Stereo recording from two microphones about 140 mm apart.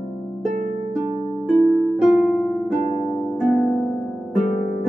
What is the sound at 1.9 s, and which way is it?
Harp, 5° right (ahead or behind).